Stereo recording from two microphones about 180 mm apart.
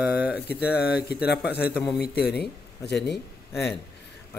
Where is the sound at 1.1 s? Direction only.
65° left (ahead or behind).